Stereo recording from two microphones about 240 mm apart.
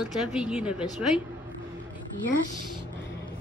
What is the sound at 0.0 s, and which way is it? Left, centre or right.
Speech, centre.